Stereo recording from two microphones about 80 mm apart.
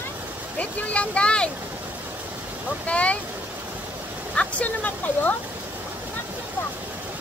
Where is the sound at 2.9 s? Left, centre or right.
Centre.